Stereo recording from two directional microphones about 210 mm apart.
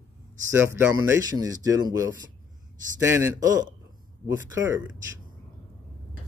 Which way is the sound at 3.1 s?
15° right (ahead or behind).